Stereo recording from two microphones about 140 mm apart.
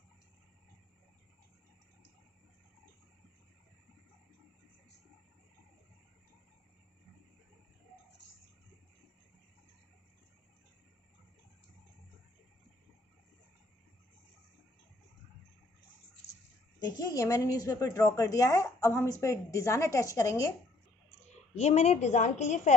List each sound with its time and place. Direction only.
16.8 s a woman's voice: 25° left (ahead or behind)
21.5 s a woman's voice: 50° left (ahead or behind)